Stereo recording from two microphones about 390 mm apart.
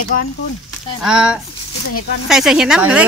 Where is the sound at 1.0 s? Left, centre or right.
Centre.